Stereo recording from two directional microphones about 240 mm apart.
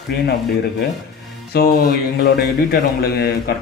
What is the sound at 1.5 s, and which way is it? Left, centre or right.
A man's voice, left.